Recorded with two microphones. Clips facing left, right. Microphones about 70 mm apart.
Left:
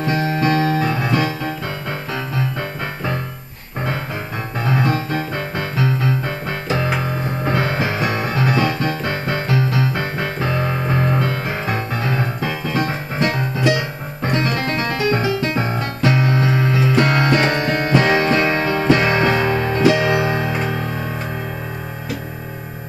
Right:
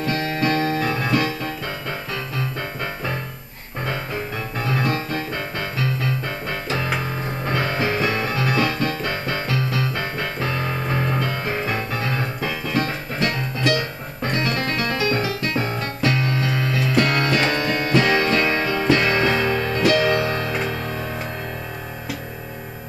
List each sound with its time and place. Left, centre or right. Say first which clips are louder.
0.0 s music: left 3 dB; left
4.6 s music: left 4 dB; left
10.1 s music: left 3 dB; centre